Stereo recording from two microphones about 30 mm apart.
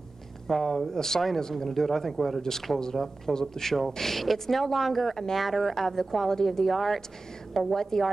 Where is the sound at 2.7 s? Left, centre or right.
Left.